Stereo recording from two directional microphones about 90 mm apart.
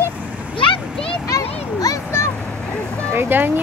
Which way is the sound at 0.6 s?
75° left (ahead or behind).